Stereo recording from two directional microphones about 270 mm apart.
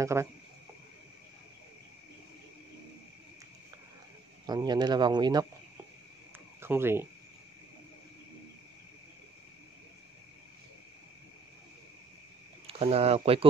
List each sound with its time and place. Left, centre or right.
0.0 s speech: centre
4.5 s speech: centre
6.6 s speech: centre
12.6 s speech: right